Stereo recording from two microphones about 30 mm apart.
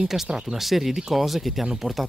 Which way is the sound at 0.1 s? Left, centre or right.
Centre.